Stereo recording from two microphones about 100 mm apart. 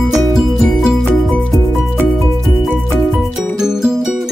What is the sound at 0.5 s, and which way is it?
Music, centre (ahead or behind).